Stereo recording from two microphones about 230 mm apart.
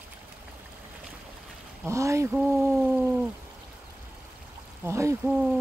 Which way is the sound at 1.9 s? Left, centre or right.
Centre.